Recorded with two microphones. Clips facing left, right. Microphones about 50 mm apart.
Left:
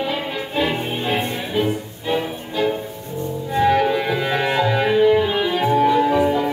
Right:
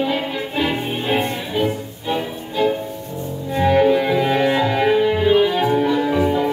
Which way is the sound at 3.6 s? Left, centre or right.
Centre.